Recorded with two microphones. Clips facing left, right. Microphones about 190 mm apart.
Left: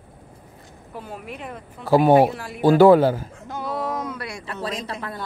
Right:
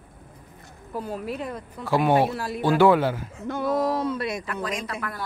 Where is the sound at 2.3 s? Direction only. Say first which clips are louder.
Right 4 dB; 35° right (ahead or behind).